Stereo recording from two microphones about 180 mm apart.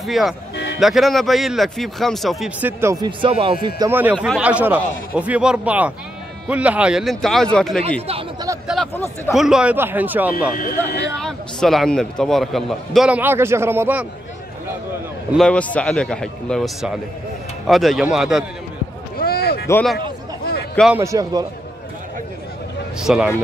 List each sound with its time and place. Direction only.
0.0 s a man's voice: centre (ahead or behind)
2.8 s a man's voice: 20° right (ahead or behind)
3.9 s a man's voice: 10° right (ahead or behind)
8.1 s speech: 20° right (ahead or behind)
9.3 s speech: 5° right (ahead or behind)
10.5 s speech: 50° left (ahead or behind)
11.1 s a man's voice: centre (ahead or behind)
15.3 s a man's voice: 5° left (ahead or behind)
19.1 s a sound: 55° left (ahead or behind)
19.7 s a man's voice: 5° left (ahead or behind)
20.9 s a man's voice: 15° right (ahead or behind)
22.9 s a man's voice: 5° right (ahead or behind)